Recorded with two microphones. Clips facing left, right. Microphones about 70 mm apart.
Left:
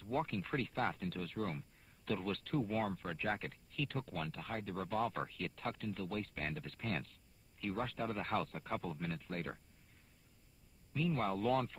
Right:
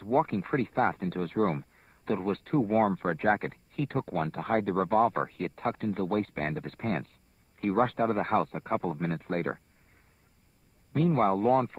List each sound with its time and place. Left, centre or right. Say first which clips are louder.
0.0 s speech: right 12 dB; right
10.9 s speech: right 12 dB; right